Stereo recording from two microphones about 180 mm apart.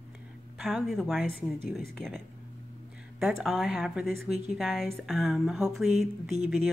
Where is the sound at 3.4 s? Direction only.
Centre (ahead or behind).